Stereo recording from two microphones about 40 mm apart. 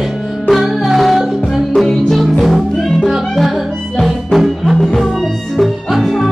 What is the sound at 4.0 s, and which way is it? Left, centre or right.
Music, centre.